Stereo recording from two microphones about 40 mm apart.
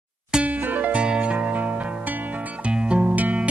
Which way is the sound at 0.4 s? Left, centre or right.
Right.